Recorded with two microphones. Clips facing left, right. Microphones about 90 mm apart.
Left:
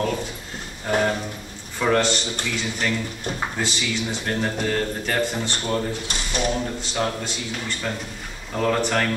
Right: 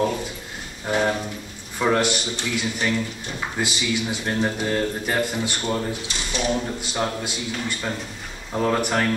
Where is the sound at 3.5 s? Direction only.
10° right (ahead or behind).